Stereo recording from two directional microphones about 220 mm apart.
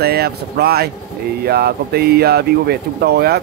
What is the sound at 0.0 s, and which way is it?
Speech, 45° right (ahead or behind).